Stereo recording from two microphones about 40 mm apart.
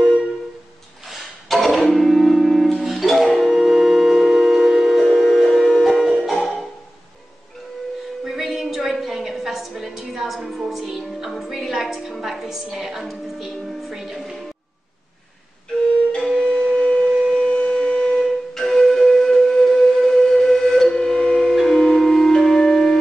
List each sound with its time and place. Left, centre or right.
1.0 s music: centre
5.0 s a sound: centre
5.9 s music: centre
8.3 s a sound: centre
12.2 s music: centre
16.2 s flute: centre
16.4 s music: centre
17.1 s civil defense siren: centre
17.4 s a sound: left
18.5 s music: centre
20.9 s a sound: centre
21.5 s music: centre